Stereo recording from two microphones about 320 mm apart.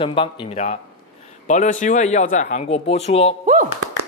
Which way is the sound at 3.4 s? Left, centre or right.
Right.